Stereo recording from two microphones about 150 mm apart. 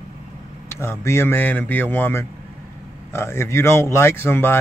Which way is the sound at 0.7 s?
15° left (ahead or behind).